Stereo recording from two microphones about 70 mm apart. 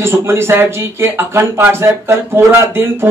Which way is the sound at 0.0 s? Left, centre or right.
Right.